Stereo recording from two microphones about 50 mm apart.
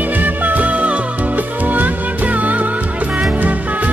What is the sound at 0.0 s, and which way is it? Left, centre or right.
Music, right.